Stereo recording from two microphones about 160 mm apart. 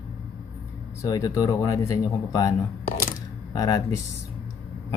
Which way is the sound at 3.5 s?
20° left (ahead or behind).